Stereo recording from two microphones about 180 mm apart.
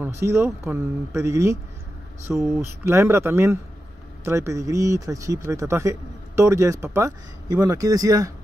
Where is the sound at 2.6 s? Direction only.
15° right (ahead or behind).